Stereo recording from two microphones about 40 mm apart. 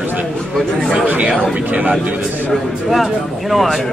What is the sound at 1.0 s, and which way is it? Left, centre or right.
Speech, right.